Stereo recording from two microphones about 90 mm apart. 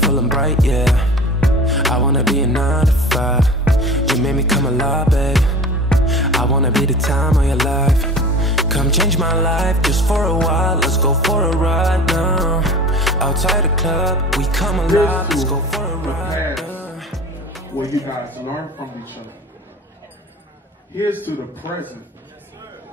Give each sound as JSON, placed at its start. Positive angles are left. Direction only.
{"t": 0.0, "sound": "music", "side_deg": 0}
{"t": 21.0, "sound": "a man's voice", "side_deg": -20}